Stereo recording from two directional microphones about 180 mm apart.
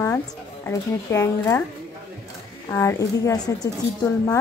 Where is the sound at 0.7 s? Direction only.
15° left (ahead or behind).